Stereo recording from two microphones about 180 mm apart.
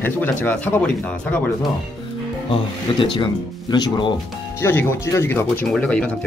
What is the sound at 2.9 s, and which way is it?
Speech, 30° left (ahead or behind).